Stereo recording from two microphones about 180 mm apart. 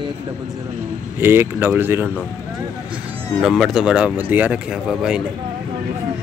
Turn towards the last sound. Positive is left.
turn(degrees=-5)  # may be behind; listen again after turning